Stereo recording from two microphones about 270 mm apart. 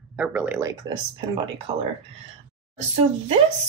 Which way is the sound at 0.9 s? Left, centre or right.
Centre.